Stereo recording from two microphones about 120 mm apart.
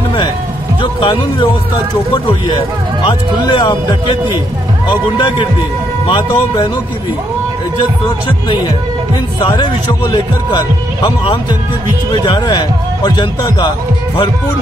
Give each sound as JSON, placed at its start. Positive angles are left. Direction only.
{"t": 1.0, "sound": "speech", "side_deg": 45}
{"t": 3.0, "sound": "speech", "side_deg": 40}
{"t": 9.4, "sound": "speech", "side_deg": 35}